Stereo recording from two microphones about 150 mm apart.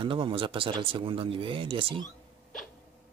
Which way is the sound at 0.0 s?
35° right (ahead or behind).